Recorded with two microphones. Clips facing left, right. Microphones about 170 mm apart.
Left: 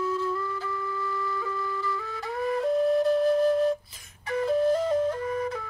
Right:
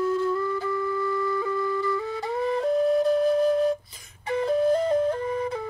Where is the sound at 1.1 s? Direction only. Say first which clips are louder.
Right 6 dB; 25° right (ahead or behind).